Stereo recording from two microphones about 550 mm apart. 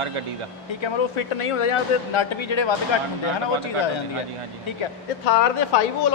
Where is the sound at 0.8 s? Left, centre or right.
Left.